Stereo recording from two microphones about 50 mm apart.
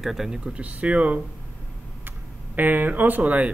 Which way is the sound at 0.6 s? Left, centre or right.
Right.